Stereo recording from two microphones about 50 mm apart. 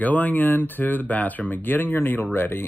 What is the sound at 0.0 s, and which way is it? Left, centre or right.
Speech, left.